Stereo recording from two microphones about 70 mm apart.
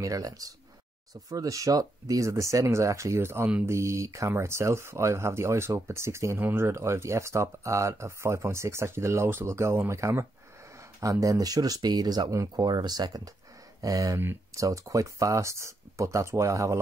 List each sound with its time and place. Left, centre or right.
0.0 s speech: right
13.7 s speech: right